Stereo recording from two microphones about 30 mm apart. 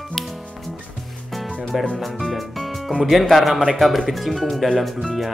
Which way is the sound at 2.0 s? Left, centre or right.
Centre.